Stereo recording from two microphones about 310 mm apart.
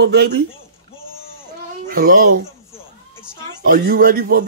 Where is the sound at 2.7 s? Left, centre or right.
Centre.